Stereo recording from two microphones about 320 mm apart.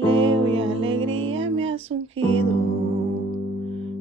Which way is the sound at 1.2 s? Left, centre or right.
Right.